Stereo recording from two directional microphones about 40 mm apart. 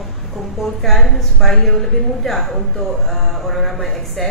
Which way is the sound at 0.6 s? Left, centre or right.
Centre.